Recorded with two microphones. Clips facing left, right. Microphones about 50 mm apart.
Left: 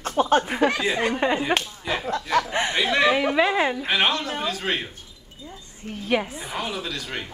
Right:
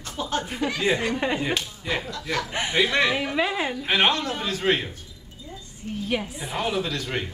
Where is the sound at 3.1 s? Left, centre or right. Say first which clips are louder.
Left 4 dB; left.